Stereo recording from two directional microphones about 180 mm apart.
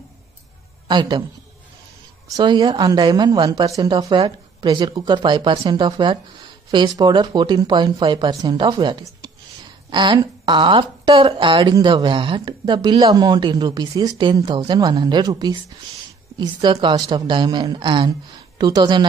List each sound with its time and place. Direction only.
0.8 s speech: 25° right (ahead or behind)
2.3 s speech: 25° right (ahead or behind)